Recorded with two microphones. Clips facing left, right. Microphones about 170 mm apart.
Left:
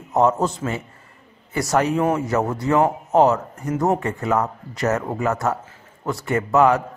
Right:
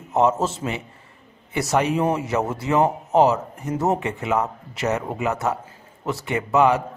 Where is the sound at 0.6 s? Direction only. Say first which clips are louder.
Left 2 dB; 20° right (ahead or behind).